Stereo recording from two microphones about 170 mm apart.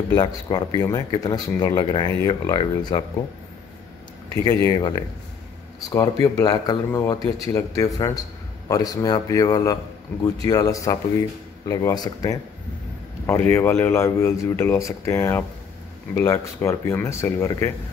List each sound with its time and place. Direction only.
0.1 s speech: 25° left (ahead or behind)
4.5 s speech: 20° left (ahead or behind)
6.2 s speech: 20° left (ahead or behind)